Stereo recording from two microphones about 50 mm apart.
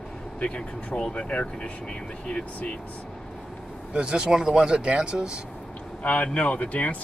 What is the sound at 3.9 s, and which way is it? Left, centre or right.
Speech, centre.